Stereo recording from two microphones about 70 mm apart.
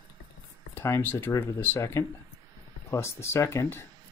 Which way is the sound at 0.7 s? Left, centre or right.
Left.